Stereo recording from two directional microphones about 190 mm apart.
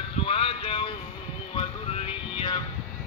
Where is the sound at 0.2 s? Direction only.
30° left (ahead or behind).